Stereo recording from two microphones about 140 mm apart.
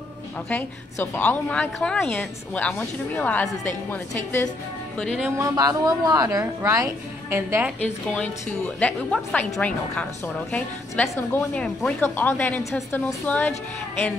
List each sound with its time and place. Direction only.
0.5 s a woman's voice: 15° left (ahead or behind)
4.9 s music: 5° left (ahead or behind)
5.4 s a woman's voice: 25° right (ahead or behind)
7.8 s a woman's voice: 10° left (ahead or behind)